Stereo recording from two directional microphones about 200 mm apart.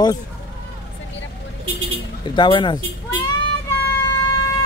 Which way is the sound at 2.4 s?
25° left (ahead or behind).